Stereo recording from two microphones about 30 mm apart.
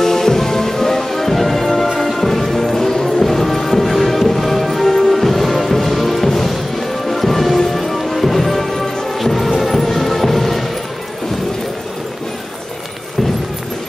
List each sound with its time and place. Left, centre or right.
0.0 s music: centre
4.8 s music: centre